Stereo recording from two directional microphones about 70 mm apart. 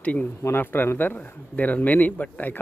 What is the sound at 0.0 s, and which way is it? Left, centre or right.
Speech, left.